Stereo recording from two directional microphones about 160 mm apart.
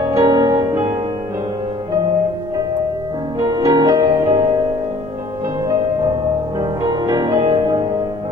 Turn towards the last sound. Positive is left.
turn(degrees=-25)  # may be behind; listen again after turning